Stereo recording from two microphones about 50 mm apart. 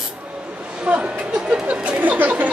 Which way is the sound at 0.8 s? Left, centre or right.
Right.